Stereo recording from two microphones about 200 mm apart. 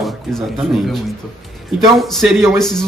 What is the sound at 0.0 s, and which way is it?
A man's voice, centre (ahead or behind).